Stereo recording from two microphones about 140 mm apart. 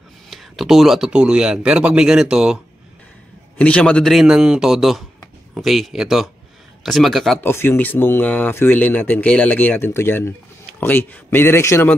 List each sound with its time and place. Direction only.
0.3 s speech: centre (ahead or behind)
3.5 s speech: 10° left (ahead or behind)
7.4 s speech: 15° left (ahead or behind)